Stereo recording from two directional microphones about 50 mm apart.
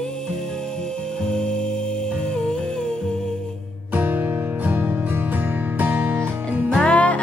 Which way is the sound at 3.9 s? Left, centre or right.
Right.